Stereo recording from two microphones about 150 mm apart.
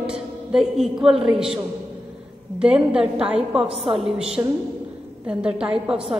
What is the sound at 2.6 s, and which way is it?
A woman's voice, 5° right (ahead or behind).